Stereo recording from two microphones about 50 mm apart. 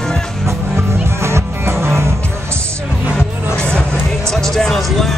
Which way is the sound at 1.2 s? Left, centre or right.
Right.